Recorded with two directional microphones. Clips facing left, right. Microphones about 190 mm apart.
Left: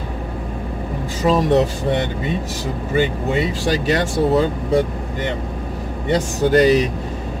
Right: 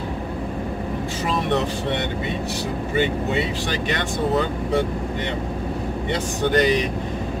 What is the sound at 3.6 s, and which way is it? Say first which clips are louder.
Speech: left 6 dB; 40° left (ahead or behind).